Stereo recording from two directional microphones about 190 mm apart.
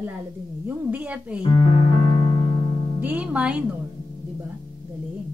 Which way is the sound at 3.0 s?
10° right (ahead or behind).